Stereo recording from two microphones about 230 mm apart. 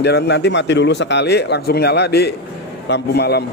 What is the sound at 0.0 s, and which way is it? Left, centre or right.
Speech, left.